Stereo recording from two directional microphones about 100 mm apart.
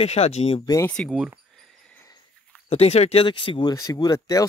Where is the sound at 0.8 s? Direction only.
10° left (ahead or behind).